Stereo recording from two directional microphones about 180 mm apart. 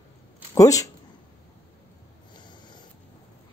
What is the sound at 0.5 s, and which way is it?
Speech, 20° left (ahead or behind).